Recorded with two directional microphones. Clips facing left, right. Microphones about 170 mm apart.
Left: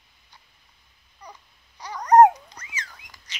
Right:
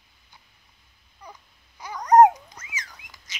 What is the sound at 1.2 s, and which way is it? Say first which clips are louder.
Babbling: even; 5° right (ahead or behind).